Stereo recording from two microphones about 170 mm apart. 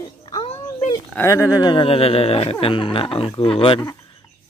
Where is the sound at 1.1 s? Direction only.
15° left (ahead or behind); by 3.9 s 30° left (ahead or behind).